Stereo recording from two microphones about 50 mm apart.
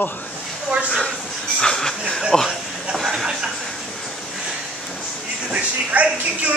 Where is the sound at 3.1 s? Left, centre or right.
Centre.